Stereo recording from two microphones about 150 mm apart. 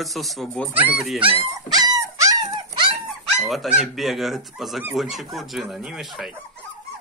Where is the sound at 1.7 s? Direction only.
25° right (ahead or behind).